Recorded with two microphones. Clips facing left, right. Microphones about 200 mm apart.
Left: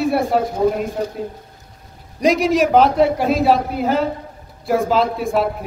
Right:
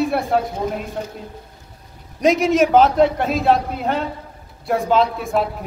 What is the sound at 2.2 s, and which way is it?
A man's voice, centre (ahead or behind).